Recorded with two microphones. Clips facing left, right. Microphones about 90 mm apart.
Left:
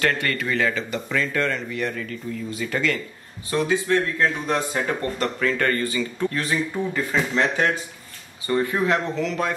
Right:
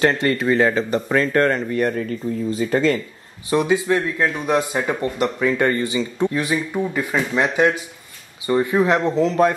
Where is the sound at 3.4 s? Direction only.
20° right (ahead or behind); by 9.5 s 35° right (ahead or behind).